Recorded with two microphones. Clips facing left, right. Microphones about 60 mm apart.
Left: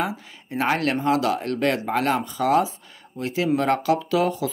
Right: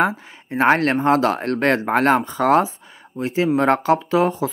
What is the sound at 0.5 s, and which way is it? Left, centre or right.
Speech, right.